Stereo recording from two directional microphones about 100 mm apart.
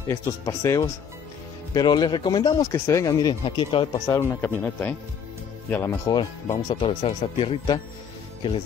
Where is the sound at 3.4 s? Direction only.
60° left (ahead or behind).